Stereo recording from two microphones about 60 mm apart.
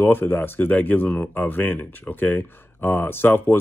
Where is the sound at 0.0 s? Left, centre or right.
Left.